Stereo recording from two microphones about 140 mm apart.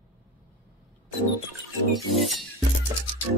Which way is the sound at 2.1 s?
Centre (ahead or behind).